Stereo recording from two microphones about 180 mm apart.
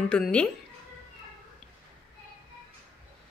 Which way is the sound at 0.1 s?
5° left (ahead or behind).